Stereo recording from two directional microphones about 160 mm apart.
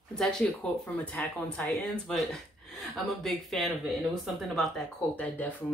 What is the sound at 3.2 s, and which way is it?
Speech, centre (ahead or behind).